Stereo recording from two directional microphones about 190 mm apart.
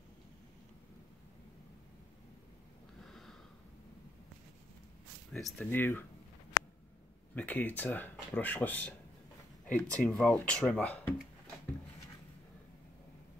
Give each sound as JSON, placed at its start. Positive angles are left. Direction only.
{"t": 3.0, "sound": "a sound", "side_deg": 0}
{"t": 5.3, "sound": "speech", "side_deg": 5}
{"t": 7.3, "sound": "speech", "side_deg": 10}